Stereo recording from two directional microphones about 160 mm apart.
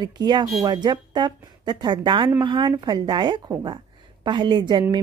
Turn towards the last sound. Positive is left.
turn(degrees=-30)  # may be behind; listen again after turning